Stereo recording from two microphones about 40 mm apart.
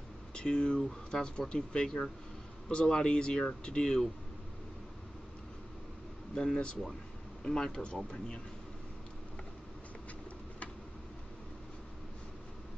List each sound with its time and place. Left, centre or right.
0.3 s speech: left
0.7 s speech: centre
6.3 s speech: left
7.4 s speech: centre